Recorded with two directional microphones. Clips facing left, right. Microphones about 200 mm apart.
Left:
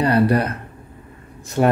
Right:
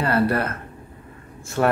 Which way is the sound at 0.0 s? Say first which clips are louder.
Left 4 dB; 15° left (ahead or behind).